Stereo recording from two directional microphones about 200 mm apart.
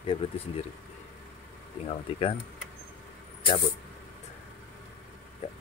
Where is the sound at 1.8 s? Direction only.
30° left (ahead or behind).